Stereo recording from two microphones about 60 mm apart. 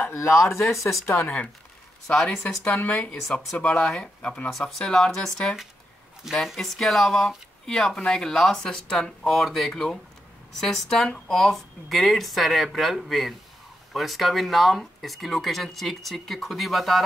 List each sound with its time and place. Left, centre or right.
0.1 s speech: left
2.0 s speech: centre
4.5 s speech: centre